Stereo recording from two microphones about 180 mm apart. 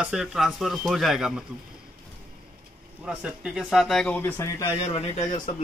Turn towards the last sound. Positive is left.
turn(degrees=30)  # may be behind; listen again after turning